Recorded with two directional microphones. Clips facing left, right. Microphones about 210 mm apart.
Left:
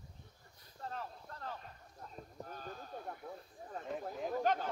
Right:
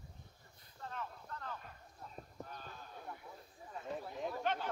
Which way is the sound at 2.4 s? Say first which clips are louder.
Left 5 dB; 45° left (ahead or behind).